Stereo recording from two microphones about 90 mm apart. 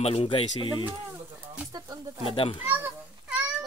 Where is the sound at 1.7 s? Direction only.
45° right (ahead or behind).